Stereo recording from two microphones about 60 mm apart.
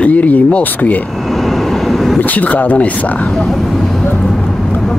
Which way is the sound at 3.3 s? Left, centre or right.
Centre.